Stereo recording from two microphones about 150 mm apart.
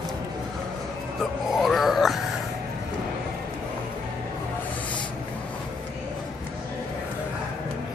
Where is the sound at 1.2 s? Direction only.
Centre (ahead or behind).